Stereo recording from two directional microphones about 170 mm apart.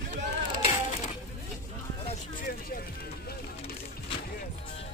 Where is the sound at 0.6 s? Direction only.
40° left (ahead or behind).